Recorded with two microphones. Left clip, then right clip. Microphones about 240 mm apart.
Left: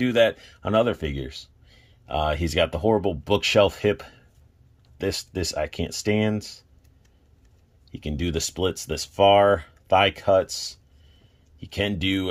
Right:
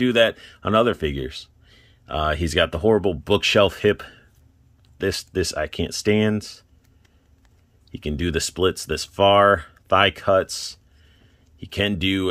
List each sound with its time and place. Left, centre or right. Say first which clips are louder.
0.0 s speech: right 2 dB; centre
7.9 s speech: right 4 dB; centre